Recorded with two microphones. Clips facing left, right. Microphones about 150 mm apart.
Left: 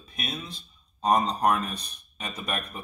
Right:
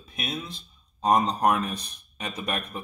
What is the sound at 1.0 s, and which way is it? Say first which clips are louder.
Speech: right 1 dB; 15° right (ahead or behind).